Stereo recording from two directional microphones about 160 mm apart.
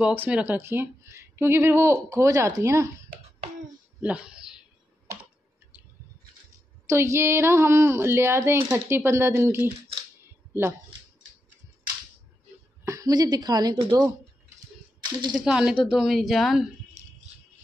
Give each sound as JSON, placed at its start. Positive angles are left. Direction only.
{"t": 0.0, "sound": "speech", "side_deg": -10}
{"t": 4.0, "sound": "a sound", "side_deg": -10}
{"t": 6.9, "sound": "speech", "side_deg": -15}
{"t": 12.8, "sound": "a woman's voice", "side_deg": -20}
{"t": 15.3, "sound": "a woman's voice", "side_deg": -5}